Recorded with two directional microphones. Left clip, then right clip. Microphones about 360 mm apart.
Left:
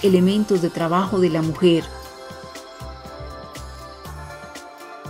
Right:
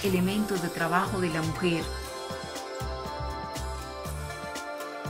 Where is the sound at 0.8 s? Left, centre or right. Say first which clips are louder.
Left 7 dB; centre.